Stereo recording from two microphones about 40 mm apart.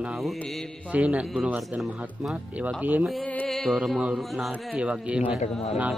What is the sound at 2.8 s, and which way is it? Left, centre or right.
Speech, right.